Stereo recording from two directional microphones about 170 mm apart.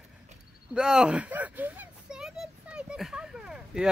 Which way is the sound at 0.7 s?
5° right (ahead or behind).